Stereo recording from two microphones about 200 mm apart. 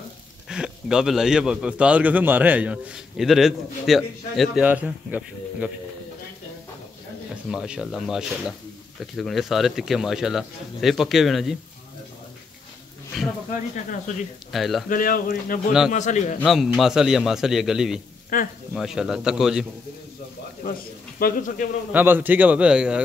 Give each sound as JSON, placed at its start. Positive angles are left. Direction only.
{"t": 0.5, "sound": "a man's voice", "side_deg": -5}
{"t": 7.4, "sound": "a man's voice", "side_deg": -5}
{"t": 14.5, "sound": "a man's voice", "side_deg": 0}
{"t": 14.9, "sound": "a man's voice", "side_deg": 45}
{"t": 16.3, "sound": "a man's voice", "side_deg": 0}
{"t": 18.3, "sound": "speech", "side_deg": 45}
{"t": 18.7, "sound": "a man's voice", "side_deg": 0}
{"t": 21.2, "sound": "a man's voice", "side_deg": 40}
{"t": 21.9, "sound": "a man's voice", "side_deg": -10}